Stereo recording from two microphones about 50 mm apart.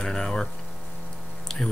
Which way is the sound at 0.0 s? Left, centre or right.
Centre.